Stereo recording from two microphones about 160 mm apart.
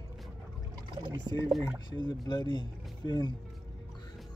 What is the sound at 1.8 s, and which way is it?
Speech, 30° left (ahead or behind).